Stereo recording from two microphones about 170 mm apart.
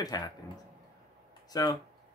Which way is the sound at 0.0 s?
20° left (ahead or behind).